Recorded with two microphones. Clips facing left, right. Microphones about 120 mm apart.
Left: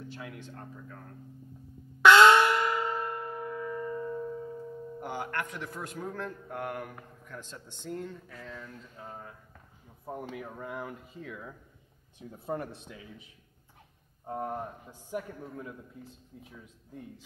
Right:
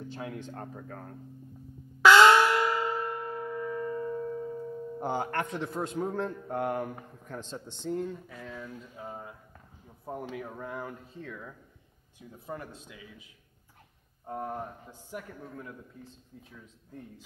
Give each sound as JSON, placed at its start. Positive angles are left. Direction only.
{"t": 0.1, "sound": "speech", "side_deg": -30}
{"t": 0.5, "sound": "speech", "side_deg": -50}
{"t": 2.0, "sound": "church bell", "side_deg": 0}
{"t": 5.0, "sound": "a man's voice", "side_deg": -30}
{"t": 7.9, "sound": "speech", "side_deg": -10}
{"t": 10.0, "sound": "speech", "side_deg": 0}
{"t": 12.2, "sound": "a man's voice", "side_deg": 30}
{"t": 14.2, "sound": "a man's voice", "side_deg": 10}
{"t": 16.0, "sound": "speech", "side_deg": 10}